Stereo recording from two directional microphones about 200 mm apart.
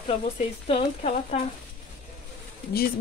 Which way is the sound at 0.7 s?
30° left (ahead or behind).